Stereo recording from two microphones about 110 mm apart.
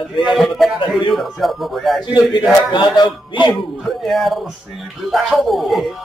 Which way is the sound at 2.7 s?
40° left (ahead or behind).